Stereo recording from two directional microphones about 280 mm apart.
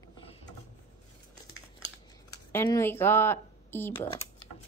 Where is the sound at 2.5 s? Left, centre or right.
Centre.